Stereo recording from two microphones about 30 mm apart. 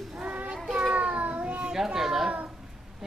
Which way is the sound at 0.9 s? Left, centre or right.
Right.